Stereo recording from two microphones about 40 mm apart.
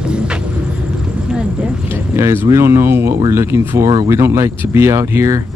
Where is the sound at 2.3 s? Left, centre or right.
Right.